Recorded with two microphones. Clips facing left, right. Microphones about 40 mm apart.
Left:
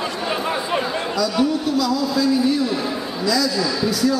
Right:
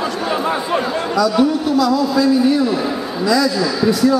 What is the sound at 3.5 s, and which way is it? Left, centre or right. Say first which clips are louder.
Speech: right 4 dB; centre.